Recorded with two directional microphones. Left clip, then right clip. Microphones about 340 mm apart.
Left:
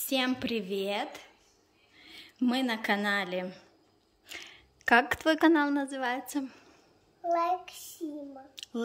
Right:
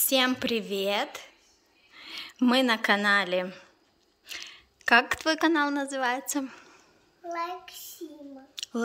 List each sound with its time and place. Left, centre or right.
0.0 s a woman's voice: centre
7.3 s child singing: centre